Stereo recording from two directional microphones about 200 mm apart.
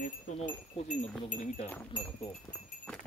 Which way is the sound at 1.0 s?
40° left (ahead or behind).